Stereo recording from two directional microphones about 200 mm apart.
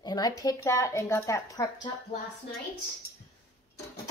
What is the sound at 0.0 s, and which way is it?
Speech, 20° left (ahead or behind).